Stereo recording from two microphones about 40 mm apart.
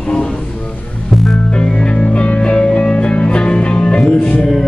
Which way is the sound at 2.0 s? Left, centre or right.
Left.